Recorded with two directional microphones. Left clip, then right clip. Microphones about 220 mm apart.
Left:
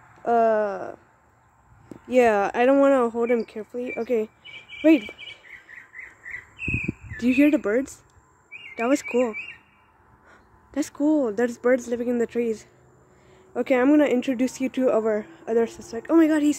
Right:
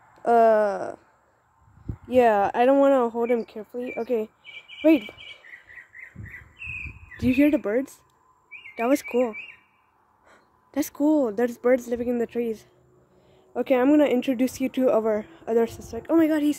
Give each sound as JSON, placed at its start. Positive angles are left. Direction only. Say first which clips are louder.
{"t": 0.1, "sound": "a sound", "louder": "right 2 dB", "side_deg": -25}
{"t": 2.0, "sound": "speech", "louder": "even", "side_deg": -5}
{"t": 7.2, "sound": "a woman's voice", "louder": "left 1 dB", "side_deg": -10}